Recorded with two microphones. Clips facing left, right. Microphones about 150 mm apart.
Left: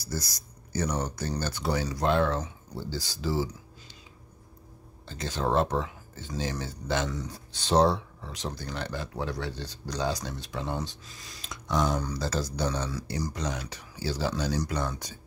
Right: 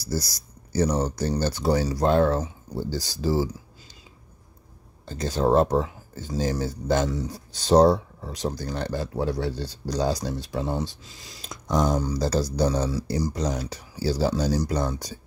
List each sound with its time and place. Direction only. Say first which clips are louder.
0.0 s speech: right 6 dB; 35° right (ahead or behind)
5.0 s speech: right 7 dB; 40° right (ahead or behind)